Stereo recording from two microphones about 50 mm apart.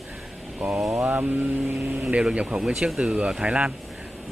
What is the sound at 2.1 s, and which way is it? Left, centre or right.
Speech, right.